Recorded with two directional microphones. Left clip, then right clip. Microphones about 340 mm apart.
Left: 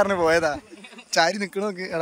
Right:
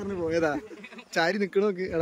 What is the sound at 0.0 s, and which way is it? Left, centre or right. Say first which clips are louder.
Speech: left 12 dB; left.